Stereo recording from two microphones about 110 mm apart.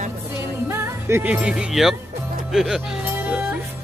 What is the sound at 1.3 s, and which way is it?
Speech, 10° right (ahead or behind).